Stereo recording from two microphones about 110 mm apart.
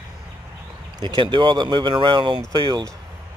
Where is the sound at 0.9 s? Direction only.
45° right (ahead or behind).